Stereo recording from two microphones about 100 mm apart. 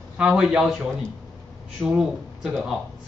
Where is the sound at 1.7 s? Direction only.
5° right (ahead or behind).